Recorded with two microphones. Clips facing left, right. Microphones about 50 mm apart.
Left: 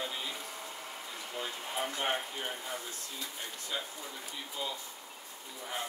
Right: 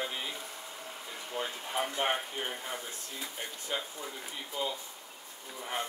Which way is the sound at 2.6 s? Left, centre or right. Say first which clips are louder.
Right 1 dB; right.